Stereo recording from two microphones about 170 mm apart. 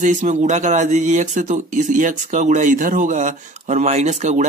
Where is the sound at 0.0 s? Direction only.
45° right (ahead or behind).